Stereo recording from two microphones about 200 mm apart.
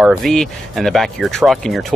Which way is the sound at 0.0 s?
Centre (ahead or behind).